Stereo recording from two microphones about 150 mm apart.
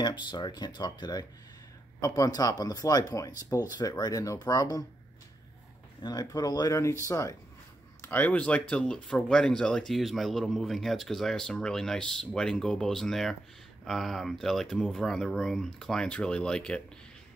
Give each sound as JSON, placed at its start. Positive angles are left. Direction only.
{"t": 0.0, "sound": "speech", "side_deg": 30}
{"t": 6.0, "sound": "speech", "side_deg": 25}